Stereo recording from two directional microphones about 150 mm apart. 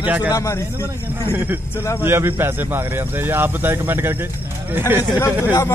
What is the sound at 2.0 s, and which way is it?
A man's voice, 15° right (ahead or behind).